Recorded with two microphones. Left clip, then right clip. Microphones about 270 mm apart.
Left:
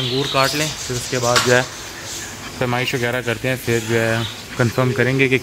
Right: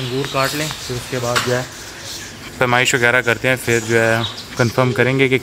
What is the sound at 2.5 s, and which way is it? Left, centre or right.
Speech, right.